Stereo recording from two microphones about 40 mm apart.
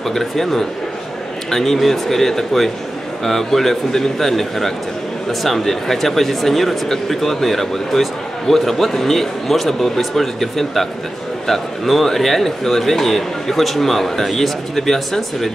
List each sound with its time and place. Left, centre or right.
0.1 s speech: centre